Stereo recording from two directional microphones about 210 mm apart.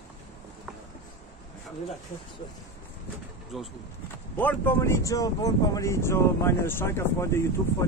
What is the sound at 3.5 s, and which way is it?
Speech, centre (ahead or behind).